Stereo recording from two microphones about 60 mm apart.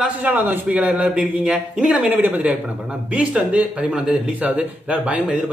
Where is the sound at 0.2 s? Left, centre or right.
Right.